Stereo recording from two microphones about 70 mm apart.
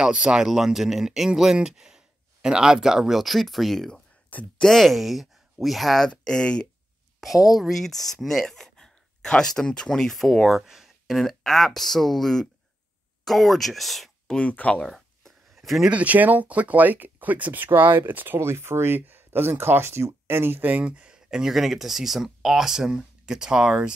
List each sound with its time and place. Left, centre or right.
0.0 s speech: centre
7.2 s speech: centre
14.3 s speech: centre
14.8 s a sound: centre
15.9 s speech: right